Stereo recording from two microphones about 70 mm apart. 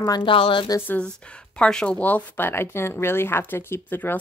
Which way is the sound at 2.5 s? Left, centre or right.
Left.